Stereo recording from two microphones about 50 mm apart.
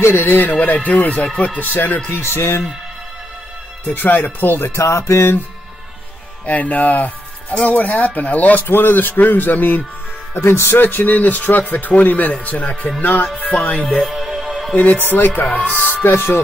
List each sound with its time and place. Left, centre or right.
0.0 s speech: left
2.0 s speech: left
3.8 s speech: left
4.8 s music: left
6.4 s speech: left
10.3 s speech: left
14.0 s music: centre
15.0 s speech: left